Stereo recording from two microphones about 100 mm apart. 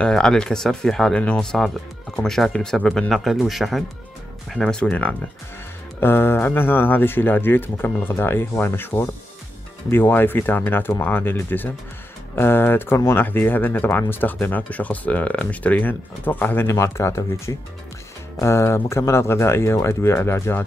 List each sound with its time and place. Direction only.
0.0 s speech: 5° left (ahead or behind)
16.6 s speech: 30° left (ahead or behind)